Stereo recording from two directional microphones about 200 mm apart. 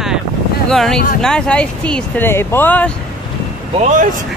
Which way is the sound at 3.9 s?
40° right (ahead or behind).